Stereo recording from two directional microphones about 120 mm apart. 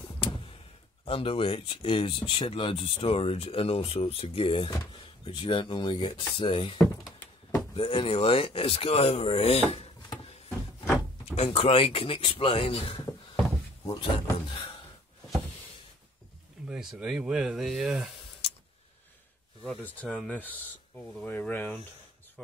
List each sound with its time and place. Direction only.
0.0 s a sound: 45° left (ahead or behind)
1.0 s speech: 50° left (ahead or behind)
11.3 s speech: 55° left (ahead or behind)
13.8 s speech: 40° left (ahead or behind)
16.6 s speech: 5° right (ahead or behind)
19.8 s speech: 10° left (ahead or behind)